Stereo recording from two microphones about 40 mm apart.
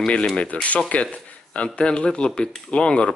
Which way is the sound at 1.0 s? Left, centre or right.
Left.